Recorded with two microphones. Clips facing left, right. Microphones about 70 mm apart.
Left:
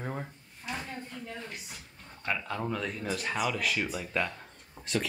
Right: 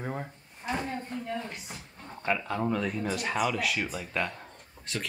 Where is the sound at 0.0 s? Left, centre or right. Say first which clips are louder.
Right 2 dB; centre.